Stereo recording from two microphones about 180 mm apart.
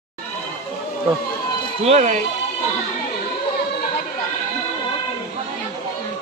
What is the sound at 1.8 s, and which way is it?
Speech, 40° right (ahead or behind).